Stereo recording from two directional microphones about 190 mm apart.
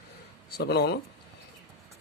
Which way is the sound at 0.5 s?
60° left (ahead or behind).